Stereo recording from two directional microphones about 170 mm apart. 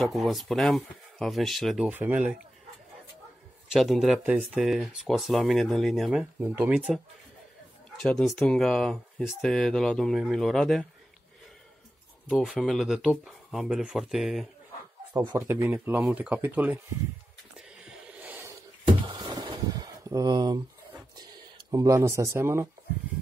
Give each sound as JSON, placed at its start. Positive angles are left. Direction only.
{"t": 0.0, "sound": "speech", "side_deg": 0}
{"t": 3.7, "sound": "speech", "side_deg": 0}
{"t": 8.0, "sound": "speech", "side_deg": 5}
{"t": 12.3, "sound": "speech", "side_deg": 0}
{"t": 15.1, "sound": "speech", "side_deg": -15}
{"t": 17.6, "sound": "a sound", "side_deg": -5}
{"t": 18.9, "sound": "a sound", "side_deg": -25}
{"t": 21.2, "sound": "speech", "side_deg": -25}